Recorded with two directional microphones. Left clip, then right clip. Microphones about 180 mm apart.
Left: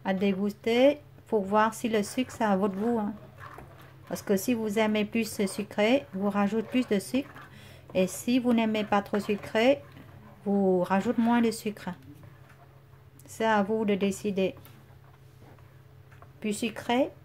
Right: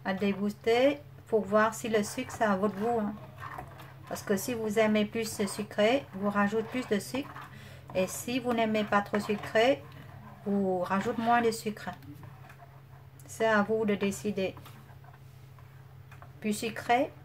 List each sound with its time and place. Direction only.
0.0 s speech: 35° left (ahead or behind)
4.1 s speech: 35° left (ahead or behind)
10.8 s speech: 35° left (ahead or behind)
13.3 s speech: 30° left (ahead or behind)
16.3 s speech: 30° left (ahead or behind)